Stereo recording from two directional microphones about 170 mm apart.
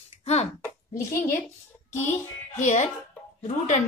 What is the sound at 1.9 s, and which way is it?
A woman's voice, 45° left (ahead or behind).